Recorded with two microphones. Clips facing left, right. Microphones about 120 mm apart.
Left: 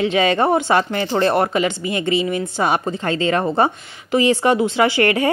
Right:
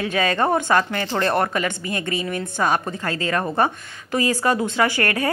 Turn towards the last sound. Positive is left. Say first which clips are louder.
# left 5 dB
turn(degrees=15)  # may be behind; listen again after turning